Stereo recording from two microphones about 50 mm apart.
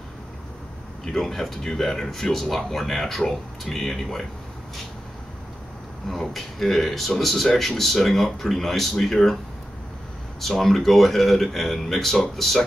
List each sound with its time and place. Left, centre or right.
1.0 s speech: centre
6.0 s speech: centre
10.4 s speech: centre